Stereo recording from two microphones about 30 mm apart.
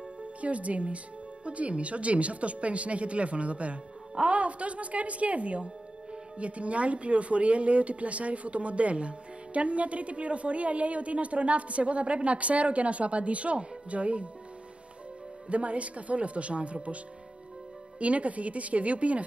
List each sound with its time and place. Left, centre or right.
0.4 s a woman's voice: right
15.4 s speech: right